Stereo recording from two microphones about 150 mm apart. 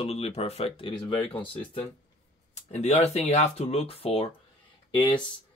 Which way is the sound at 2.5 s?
45° left (ahead or behind).